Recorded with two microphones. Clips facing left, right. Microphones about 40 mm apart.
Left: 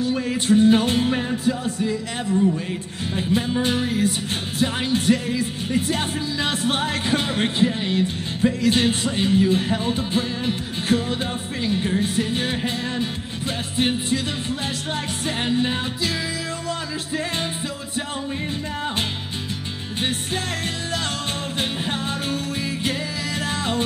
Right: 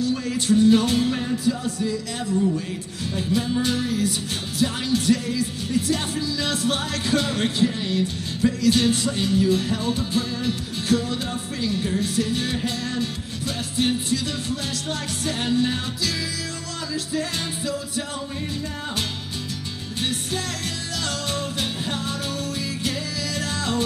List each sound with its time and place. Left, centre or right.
0.0 s music: left
3.2 s music: left
21.5 s music: left
23.4 s music: left